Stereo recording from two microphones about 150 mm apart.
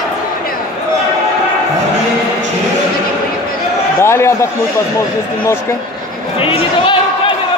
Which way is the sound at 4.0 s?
15° left (ahead or behind).